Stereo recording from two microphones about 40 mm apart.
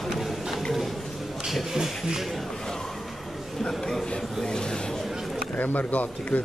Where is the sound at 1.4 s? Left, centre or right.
Centre.